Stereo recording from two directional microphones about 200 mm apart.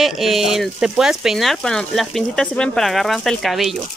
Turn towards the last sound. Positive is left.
turn(degrees=0)  # may be behind; listen again after turning